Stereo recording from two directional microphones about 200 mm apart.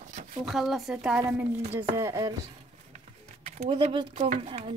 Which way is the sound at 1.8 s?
15° right (ahead or behind).